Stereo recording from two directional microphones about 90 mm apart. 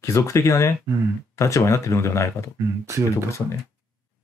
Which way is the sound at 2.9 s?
30° right (ahead or behind).